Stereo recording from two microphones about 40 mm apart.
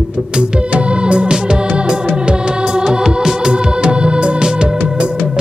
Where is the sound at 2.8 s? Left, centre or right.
Centre.